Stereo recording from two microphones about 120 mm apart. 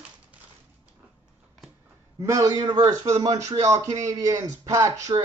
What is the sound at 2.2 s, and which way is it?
A man's voice, 25° right (ahead or behind).